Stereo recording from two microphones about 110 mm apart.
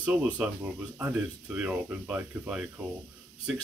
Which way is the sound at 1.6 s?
15° right (ahead or behind).